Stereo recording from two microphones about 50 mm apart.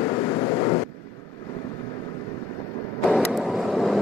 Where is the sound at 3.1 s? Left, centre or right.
Centre.